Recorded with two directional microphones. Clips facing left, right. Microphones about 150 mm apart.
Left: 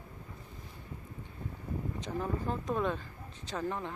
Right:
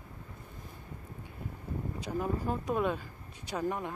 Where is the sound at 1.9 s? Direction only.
10° right (ahead or behind).